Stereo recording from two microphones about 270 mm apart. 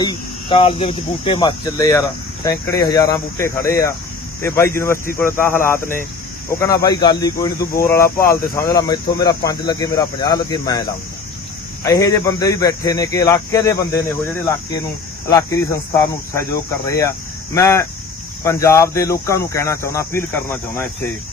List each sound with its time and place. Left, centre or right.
0.0 s speech: centre